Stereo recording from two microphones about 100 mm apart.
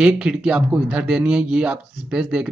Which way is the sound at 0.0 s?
10° right (ahead or behind).